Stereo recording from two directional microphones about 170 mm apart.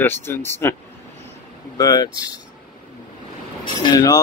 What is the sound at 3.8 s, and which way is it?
Speech, 20° left (ahead or behind).